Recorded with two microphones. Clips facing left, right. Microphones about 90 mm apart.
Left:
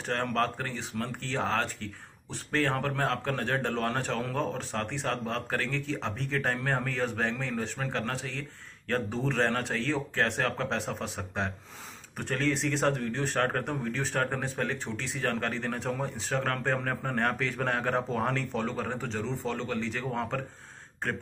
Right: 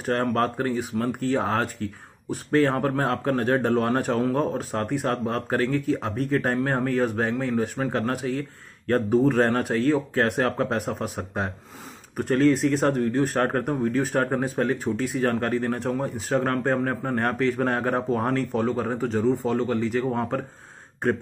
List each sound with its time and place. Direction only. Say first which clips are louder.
0.0 s speech: right 6 dB; 10° right (ahead or behind)
12.2 s speech: right 10 dB; 5° right (ahead or behind)
16.4 s speech: right 6 dB; 15° right (ahead or behind)